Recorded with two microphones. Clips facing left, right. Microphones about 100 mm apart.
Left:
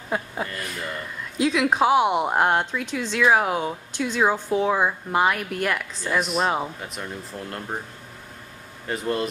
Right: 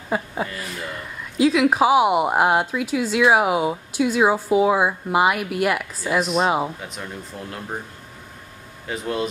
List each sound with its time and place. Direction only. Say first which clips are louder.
0.1 s a woman's voice: right 3 dB; centre (ahead or behind)
8.8 s speech: even; centre (ahead or behind)